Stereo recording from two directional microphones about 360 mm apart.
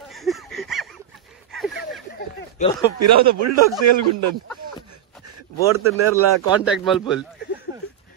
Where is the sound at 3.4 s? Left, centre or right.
Right.